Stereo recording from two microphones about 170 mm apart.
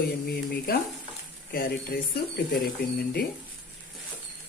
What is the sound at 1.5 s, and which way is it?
Speech, 65° left (ahead or behind).